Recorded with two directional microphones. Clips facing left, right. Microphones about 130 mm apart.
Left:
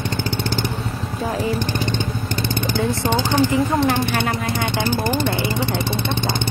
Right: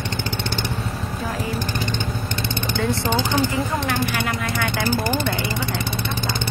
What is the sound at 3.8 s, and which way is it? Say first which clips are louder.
Speech: left 4 dB; 30° left (ahead or behind).